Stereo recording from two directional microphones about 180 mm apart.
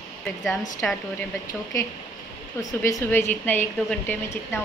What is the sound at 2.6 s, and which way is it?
A woman's voice, 15° left (ahead or behind).